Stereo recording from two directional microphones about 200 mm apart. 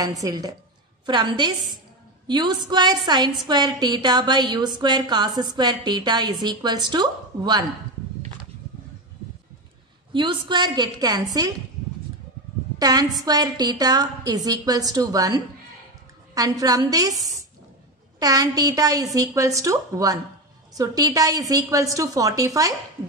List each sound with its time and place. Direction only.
0.0 s a woman's voice: 15° right (ahead or behind)
10.1 s a woman's voice: 25° right (ahead or behind)
12.7 s a woman's voice: 20° right (ahead or behind)
18.2 s a woman's voice: 20° right (ahead or behind)